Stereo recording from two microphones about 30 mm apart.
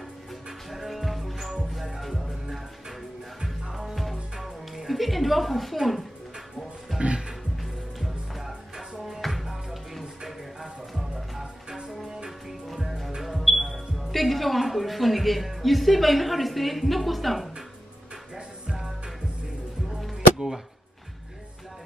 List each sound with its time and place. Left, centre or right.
0.7 s music: centre
3.6 s music: centre
3.9 s music: centre
5.8 s speech: centre
7.0 s music: right
7.6 s music: centre
10.2 s music: centre
13.2 s speech: centre
18.7 s music: centre
20.3 s a sound: centre